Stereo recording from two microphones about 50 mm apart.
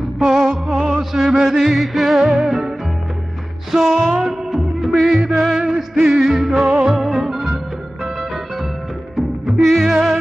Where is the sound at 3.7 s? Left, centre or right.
Centre.